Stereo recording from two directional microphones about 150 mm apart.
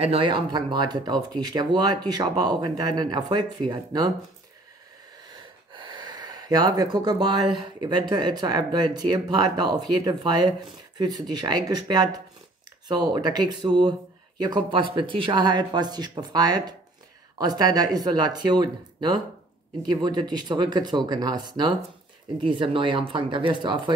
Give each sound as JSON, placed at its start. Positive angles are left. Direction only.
{"t": 0.0, "sound": "speech", "side_deg": -35}
{"t": 5.7, "sound": "speech", "side_deg": -30}